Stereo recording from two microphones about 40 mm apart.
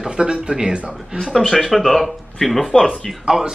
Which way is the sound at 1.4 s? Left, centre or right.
Centre.